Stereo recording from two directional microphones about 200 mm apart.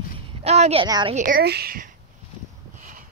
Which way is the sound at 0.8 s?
20° right (ahead or behind).